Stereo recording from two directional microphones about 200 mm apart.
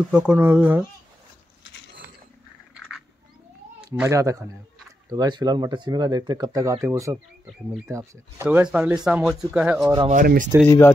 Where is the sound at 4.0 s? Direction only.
15° right (ahead or behind).